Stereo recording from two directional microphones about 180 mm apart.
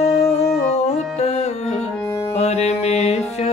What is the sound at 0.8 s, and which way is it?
Music, 40° left (ahead or behind).